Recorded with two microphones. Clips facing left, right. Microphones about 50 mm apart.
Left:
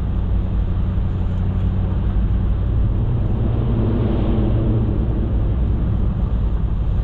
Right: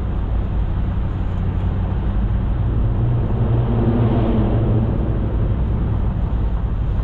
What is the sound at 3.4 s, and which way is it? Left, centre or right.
Vehicle, centre.